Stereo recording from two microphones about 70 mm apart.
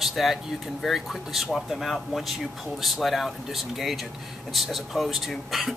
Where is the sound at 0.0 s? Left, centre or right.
Centre.